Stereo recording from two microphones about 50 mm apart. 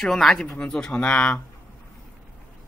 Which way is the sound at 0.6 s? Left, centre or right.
Left.